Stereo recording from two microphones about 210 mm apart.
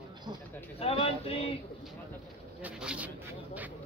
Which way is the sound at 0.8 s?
25° left (ahead or behind).